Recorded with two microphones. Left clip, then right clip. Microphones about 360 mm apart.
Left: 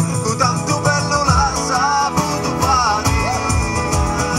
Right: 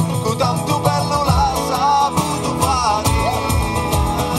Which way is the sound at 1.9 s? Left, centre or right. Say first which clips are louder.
Right 1 dB; centre.